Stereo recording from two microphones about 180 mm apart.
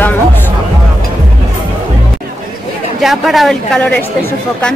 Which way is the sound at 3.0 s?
Centre (ahead or behind).